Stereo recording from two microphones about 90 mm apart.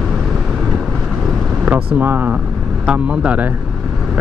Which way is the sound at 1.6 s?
20° right (ahead or behind).